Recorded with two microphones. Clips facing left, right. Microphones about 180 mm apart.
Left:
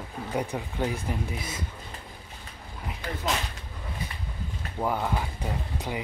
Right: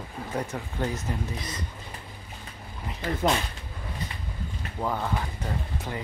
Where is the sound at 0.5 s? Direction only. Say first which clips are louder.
Left 1 dB; 10° left (ahead or behind).